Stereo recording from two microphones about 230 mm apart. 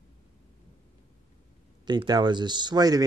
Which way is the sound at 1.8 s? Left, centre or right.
Centre.